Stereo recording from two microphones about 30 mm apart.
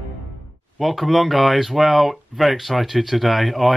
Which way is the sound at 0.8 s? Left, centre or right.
Centre.